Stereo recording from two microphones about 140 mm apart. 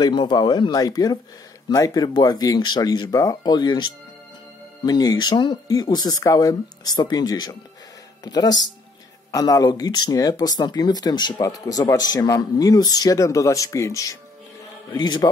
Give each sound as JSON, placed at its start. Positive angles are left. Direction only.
{"t": 0.0, "sound": "speech", "side_deg": 35}